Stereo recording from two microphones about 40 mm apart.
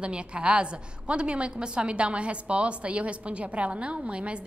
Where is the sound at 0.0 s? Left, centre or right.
Right.